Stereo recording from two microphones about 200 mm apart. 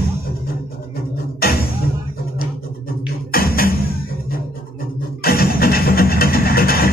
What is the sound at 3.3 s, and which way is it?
Music, 45° left (ahead or behind).